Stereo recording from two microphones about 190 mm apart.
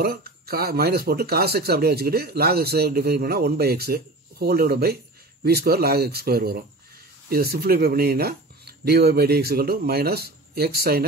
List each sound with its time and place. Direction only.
0.0 s speech: 55° right (ahead or behind)